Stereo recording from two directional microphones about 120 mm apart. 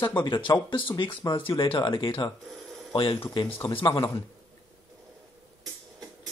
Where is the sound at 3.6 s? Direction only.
35° left (ahead or behind).